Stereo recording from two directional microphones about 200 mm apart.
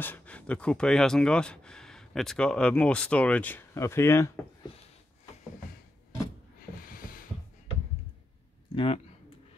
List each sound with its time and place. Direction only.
0.0 s speech: 10° left (ahead or behind)
6.8 s a sound: 45° left (ahead or behind)
8.7 s speech: 30° left (ahead or behind)